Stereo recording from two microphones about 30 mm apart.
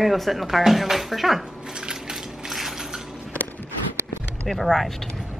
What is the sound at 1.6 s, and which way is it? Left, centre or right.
Coin, right.